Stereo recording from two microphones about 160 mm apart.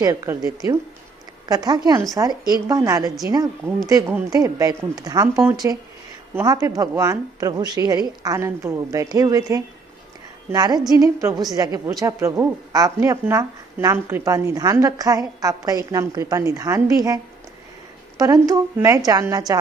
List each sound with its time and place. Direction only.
0.0 s speech: 20° right (ahead or behind)
18.1 s a sound: 25° right (ahead or behind)
18.5 s speech: 20° right (ahead or behind)